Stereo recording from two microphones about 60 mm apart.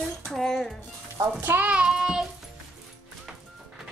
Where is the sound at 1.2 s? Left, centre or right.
Right.